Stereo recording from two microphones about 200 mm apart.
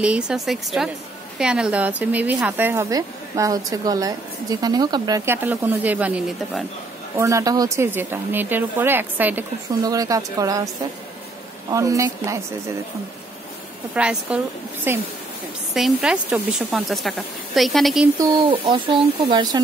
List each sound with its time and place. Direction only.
0.0 s a woman's voice: 5° right (ahead or behind)
11.7 s speech: 15° right (ahead or behind)
13.9 s a woman's voice: 5° right (ahead or behind)
18.1 s speech: 20° right (ahead or behind)